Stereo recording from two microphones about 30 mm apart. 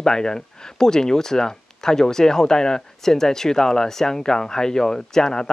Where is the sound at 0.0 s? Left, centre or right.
Left.